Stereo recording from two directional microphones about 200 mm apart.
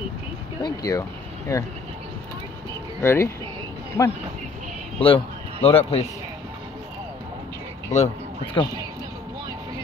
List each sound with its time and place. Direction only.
0.6 s speech: 20° left (ahead or behind)
3.0 s speech: 10° left (ahead or behind)
4.9 s a man's voice: 30° left (ahead or behind)
7.9 s speech: 35° left (ahead or behind)